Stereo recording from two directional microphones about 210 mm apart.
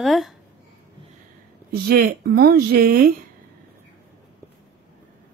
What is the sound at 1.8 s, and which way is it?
Speech, 45° right (ahead or behind).